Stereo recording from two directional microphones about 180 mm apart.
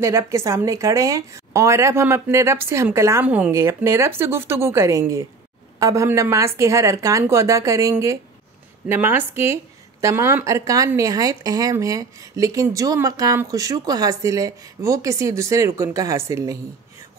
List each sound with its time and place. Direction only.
0.0 s a woman's voice: 15° right (ahead or behind)